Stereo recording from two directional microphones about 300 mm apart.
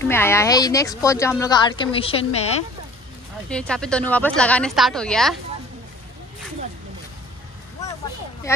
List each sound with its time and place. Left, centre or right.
0.0 s speech: centre
3.4 s a woman's voice: centre